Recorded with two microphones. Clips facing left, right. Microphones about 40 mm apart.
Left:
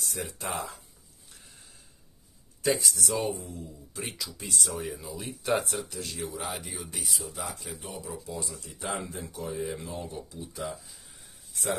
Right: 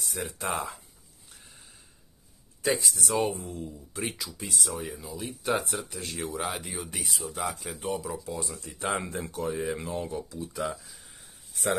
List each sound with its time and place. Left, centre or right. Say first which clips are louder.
0.4 s speech: right 4 dB; right
2.7 s speech: even; right
3.1 s speech: right 5 dB; right
4.2 s speech: even; centre
5.9 s speech: right 2 dB; right
8.4 s speech: right 3 dB; right
9.9 s speech: right 5 dB; right